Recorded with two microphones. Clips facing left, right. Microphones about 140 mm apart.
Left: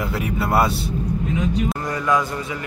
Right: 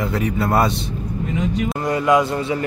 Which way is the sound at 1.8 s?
20° right (ahead or behind).